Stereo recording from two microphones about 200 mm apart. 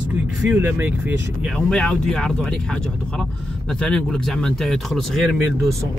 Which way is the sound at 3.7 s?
5° left (ahead or behind).